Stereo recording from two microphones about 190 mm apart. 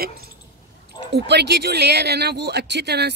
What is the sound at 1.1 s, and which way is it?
Speech, 60° right (ahead or behind).